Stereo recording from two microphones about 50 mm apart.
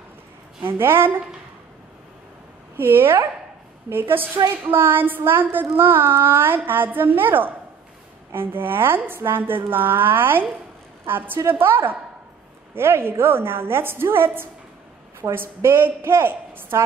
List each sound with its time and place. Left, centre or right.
0.7 s a woman's voice: right
2.8 s a woman's voice: right
11.3 s a woman's voice: right
16.7 s a woman's voice: right